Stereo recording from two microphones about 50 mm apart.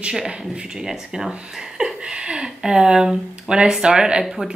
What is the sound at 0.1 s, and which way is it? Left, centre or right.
Speech, centre.